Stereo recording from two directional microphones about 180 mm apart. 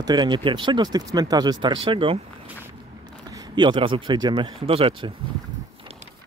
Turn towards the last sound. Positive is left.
turn(degrees=-30)  # may be behind; listen again after turning